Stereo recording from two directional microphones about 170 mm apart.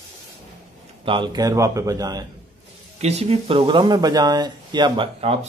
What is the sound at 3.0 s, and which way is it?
Speech, 40° right (ahead or behind).